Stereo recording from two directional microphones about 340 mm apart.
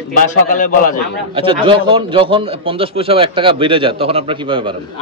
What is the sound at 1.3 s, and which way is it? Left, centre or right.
A man's voice, centre.